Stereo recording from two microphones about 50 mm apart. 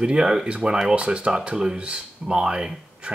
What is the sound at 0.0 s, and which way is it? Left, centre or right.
Speech, centre.